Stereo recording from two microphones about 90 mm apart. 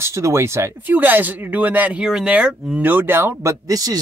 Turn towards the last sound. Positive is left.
turn(degrees=-40)  # may be behind; listen again after turning